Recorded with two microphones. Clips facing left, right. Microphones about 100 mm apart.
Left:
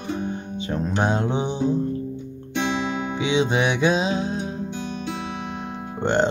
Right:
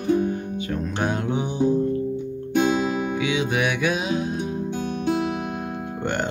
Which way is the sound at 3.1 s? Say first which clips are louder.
Left 2 dB; 25° left (ahead or behind).